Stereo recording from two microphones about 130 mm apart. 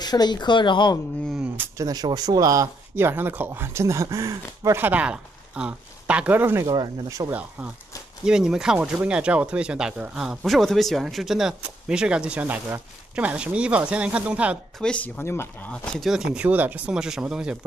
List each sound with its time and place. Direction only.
0.0 s speech: 30° left (ahead or behind)
1.3 s speech: 10° right (ahead or behind)
1.8 s speech: 30° right (ahead or behind)
8.3 s speech: 5° right (ahead or behind)
14.8 s speech: 10° left (ahead or behind); by 17.6 s 5° right (ahead or behind)